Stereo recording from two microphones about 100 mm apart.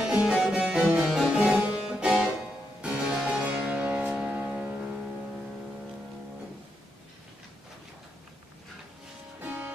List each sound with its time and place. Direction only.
0.0 s harpsichord: 10° right (ahead or behind)
4.3 s music: 15° right (ahead or behind)
9.4 s music: 15° right (ahead or behind)